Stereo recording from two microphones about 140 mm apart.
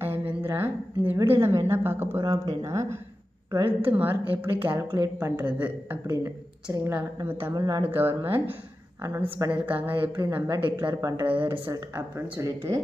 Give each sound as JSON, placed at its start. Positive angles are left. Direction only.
{"t": 0.0, "sound": "a woman's voice", "side_deg": -15}
{"t": 5.4, "sound": "a woman's voice", "side_deg": -10}
{"t": 6.0, "sound": "a woman's voice", "side_deg": -25}
{"t": 7.5, "sound": "speech", "side_deg": -25}
{"t": 7.8, "sound": "a woman's voice", "side_deg": -15}
{"t": 11.2, "sound": "a woman's voice", "side_deg": -10}